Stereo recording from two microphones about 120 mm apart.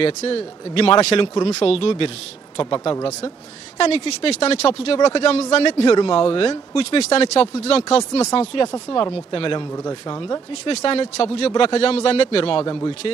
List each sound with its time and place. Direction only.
0.0 s speech: 55° left (ahead or behind)
3.7 s speech: 55° left (ahead or behind)
9.8 s speech: 35° left (ahead or behind)
10.6 s speech: 55° left (ahead or behind)